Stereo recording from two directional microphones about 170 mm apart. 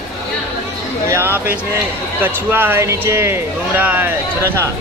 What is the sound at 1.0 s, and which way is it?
Speech, 15° right (ahead or behind).